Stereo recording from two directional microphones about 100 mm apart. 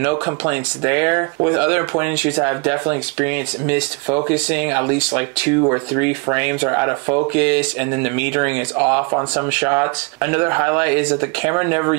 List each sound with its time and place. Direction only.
0.0 s speech: 15° right (ahead or behind)